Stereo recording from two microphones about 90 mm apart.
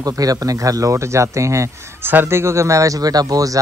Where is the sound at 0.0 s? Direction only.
40° right (ahead or behind).